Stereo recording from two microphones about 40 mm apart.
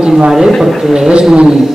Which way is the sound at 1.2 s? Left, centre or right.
Centre.